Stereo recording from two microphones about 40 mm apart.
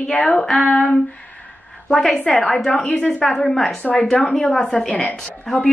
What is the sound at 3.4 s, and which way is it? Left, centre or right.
Speech, centre.